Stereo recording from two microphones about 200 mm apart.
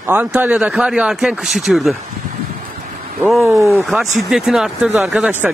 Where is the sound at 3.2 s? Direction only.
5° right (ahead or behind).